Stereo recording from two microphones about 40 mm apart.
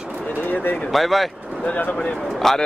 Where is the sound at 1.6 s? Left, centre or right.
Left.